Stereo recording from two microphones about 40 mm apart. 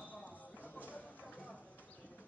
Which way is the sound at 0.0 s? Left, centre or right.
Left.